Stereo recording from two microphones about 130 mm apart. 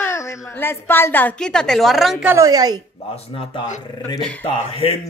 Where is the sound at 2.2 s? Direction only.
20° right (ahead or behind).